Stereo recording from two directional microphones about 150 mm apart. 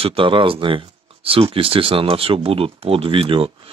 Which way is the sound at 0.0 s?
35° right (ahead or behind).